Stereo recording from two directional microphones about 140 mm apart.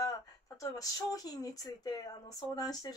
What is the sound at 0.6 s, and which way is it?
Speech, 25° left (ahead or behind).